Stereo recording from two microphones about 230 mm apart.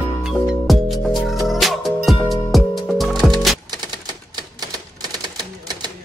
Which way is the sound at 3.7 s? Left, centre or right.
Centre.